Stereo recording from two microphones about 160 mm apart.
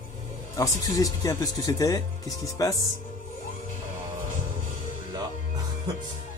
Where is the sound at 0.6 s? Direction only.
20° left (ahead or behind).